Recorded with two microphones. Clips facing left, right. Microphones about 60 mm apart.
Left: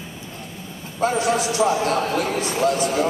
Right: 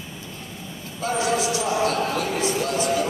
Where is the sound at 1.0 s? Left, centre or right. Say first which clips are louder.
Left 3 dB; left.